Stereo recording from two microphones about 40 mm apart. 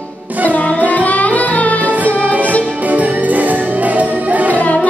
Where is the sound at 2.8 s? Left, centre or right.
Right.